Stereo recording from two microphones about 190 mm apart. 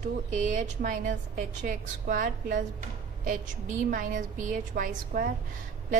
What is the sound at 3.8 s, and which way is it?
A woman's voice, 45° right (ahead or behind).